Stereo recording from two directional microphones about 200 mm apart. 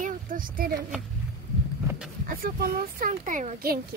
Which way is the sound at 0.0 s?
45° right (ahead or behind).